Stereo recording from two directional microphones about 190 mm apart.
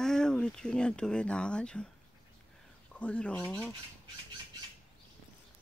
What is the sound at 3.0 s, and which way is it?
Speech, 5° left (ahead or behind).